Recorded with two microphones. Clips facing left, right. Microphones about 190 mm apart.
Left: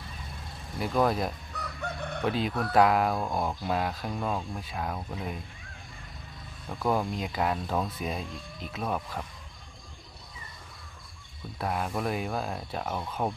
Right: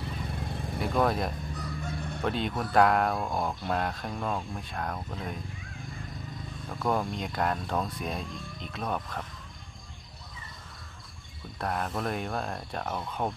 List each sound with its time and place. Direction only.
0.7 s speech: centre (ahead or behind)
1.6 s chicken: 65° left (ahead or behind)
2.2 s speech: centre (ahead or behind)
6.7 s speech: 5° left (ahead or behind)
11.5 s speech: 5° left (ahead or behind)